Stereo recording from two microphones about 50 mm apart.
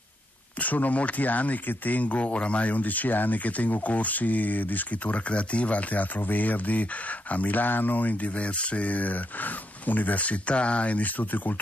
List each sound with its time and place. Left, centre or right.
0.6 s speech: left